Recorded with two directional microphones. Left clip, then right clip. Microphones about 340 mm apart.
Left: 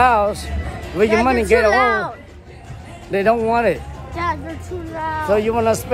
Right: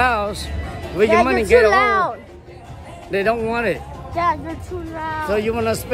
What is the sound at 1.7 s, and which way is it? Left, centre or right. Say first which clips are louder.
Speech: even; centre.